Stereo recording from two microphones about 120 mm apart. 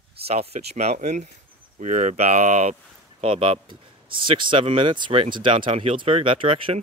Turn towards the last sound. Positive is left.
turn(degrees=-50)  # may be behind; listen again after turning